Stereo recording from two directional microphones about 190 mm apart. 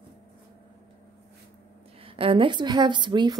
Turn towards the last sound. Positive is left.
turn(degrees=-25)  # may be behind; listen again after turning